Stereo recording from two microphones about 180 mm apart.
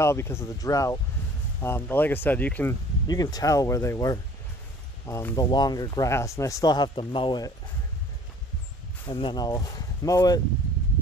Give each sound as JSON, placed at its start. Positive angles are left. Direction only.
{"t": 0.0, "sound": "speech", "side_deg": 15}
{"t": 9.0, "sound": "speech", "side_deg": 25}